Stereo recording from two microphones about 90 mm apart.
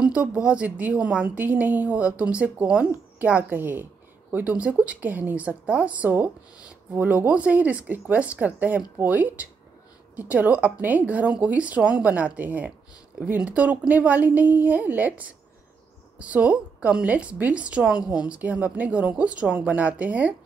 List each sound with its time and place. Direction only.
0.0 s a woman's voice: 15° right (ahead or behind)